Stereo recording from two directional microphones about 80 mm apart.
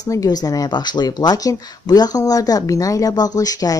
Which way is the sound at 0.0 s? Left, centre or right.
Left.